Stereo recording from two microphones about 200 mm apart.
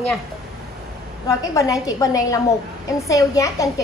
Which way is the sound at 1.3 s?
15° left (ahead or behind).